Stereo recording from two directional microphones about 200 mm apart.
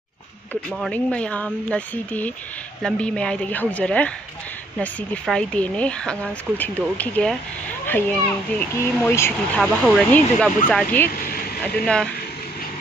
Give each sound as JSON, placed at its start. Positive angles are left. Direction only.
{"t": 0.5, "sound": "speech", "side_deg": 5}
{"t": 9.6, "sound": "speech", "side_deg": 0}
{"t": 11.1, "sound": "speech", "side_deg": 45}
{"t": 11.6, "sound": "speech", "side_deg": 5}